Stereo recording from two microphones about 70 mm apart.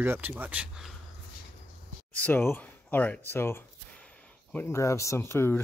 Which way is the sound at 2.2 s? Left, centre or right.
Left.